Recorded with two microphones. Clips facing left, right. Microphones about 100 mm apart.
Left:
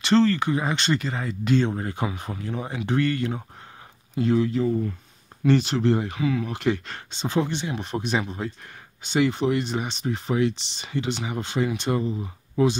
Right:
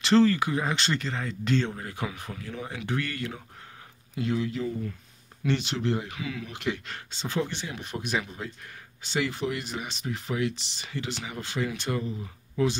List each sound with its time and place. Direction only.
0.0 s speech: 5° right (ahead or behind)
1.7 s speech: 30° left (ahead or behind)
7.1 s speech: 20° left (ahead or behind)